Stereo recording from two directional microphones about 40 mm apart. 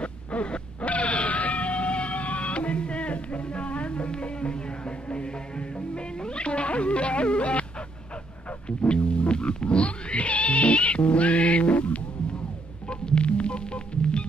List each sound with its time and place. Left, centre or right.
0.0 s a sound: left
8.6 s music: left
12.8 s hum: left